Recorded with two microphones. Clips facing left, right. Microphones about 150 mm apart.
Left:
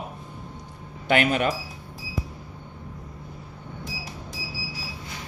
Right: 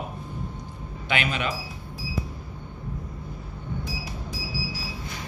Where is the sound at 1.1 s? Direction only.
50° left (ahead or behind).